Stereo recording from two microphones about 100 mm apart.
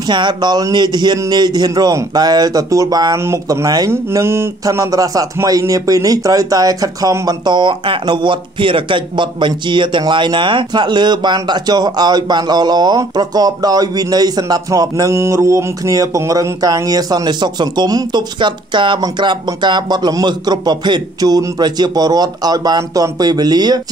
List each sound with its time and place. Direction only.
0.1 s speech: 50° right (ahead or behind)
3.9 s speech: 25° right (ahead or behind); by 23.8 s 45° right (ahead or behind)